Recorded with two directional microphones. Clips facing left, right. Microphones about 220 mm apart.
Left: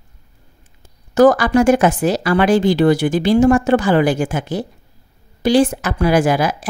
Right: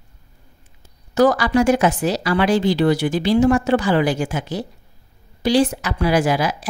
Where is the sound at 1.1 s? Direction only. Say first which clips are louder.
Left 4 dB; 50° left (ahead or behind).